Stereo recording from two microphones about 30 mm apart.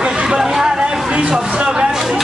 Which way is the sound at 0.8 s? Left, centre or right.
Right.